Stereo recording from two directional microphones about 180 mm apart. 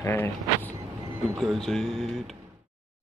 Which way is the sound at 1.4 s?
Centre (ahead or behind).